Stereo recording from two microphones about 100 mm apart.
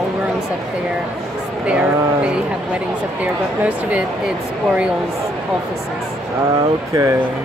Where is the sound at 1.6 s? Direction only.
10° right (ahead or behind).